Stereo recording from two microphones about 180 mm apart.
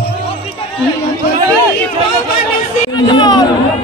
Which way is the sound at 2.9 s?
25° left (ahead or behind).